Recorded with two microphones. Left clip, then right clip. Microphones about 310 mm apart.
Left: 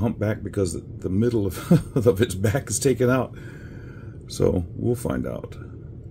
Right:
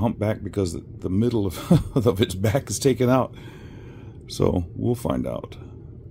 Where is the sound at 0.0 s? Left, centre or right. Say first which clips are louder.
Right 1 dB; right.